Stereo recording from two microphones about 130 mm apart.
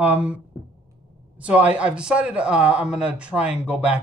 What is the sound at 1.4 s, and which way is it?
A man's voice, 10° right (ahead or behind).